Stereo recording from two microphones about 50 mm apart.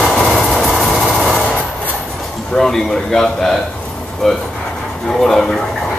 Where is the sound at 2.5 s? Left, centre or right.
Centre.